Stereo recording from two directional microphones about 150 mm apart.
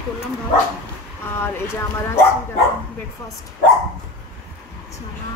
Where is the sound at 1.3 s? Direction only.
15° left (ahead or behind).